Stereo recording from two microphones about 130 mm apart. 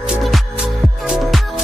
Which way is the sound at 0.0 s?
5° right (ahead or behind).